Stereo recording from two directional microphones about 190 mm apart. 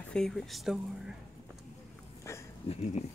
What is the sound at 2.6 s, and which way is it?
Speech, 30° left (ahead or behind).